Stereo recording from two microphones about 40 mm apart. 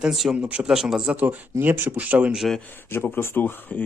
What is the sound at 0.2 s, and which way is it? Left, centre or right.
Speech, centre.